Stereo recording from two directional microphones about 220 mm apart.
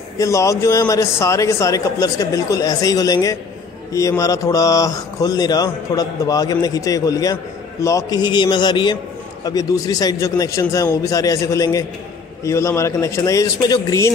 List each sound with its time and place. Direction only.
0.2 s a man's voice: 15° left (ahead or behind)